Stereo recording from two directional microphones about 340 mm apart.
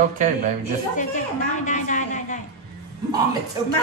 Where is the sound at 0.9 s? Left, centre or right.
Left.